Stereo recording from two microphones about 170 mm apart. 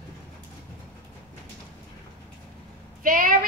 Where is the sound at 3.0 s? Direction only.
55° right (ahead or behind).